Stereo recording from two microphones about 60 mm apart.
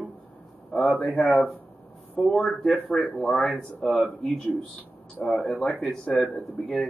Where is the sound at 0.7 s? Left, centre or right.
Centre.